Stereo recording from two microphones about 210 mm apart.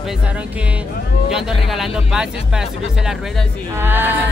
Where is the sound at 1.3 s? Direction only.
Centre (ahead or behind).